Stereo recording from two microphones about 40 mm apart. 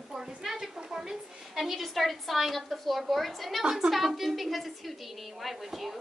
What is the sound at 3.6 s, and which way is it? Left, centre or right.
Speech, centre.